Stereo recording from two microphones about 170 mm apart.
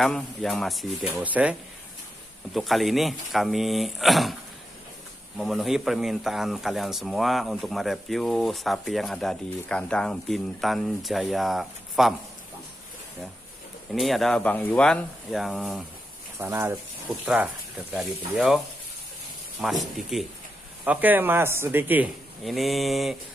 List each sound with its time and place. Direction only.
0.0 s speech: 5° left (ahead or behind)
5.4 s speech: centre (ahead or behind)
13.9 s speech: centre (ahead or behind)
16.3 s speech: 15° right (ahead or behind)
19.6 s speech: centre (ahead or behind)
22.4 s speech: centre (ahead or behind)